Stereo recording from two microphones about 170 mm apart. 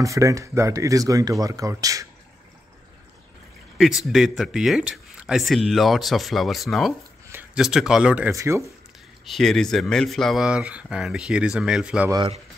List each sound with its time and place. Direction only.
0.0 s speech: 20° right (ahead or behind)
4.1 s speech: centre (ahead or behind)
8.4 s speech: 15° right (ahead or behind)
9.2 s speech: centre (ahead or behind)